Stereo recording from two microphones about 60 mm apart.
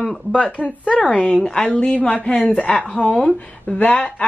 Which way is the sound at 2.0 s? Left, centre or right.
Left.